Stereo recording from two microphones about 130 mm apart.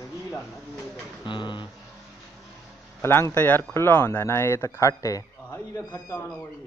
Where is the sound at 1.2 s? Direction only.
35° left (ahead or behind).